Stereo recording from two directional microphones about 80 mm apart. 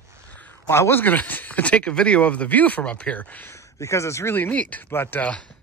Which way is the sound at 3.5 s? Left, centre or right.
Left.